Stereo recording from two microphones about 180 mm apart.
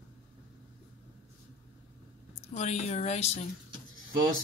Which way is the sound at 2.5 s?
40° left (ahead or behind).